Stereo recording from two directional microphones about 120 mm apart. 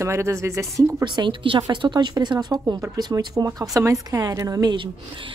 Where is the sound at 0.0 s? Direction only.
25° right (ahead or behind).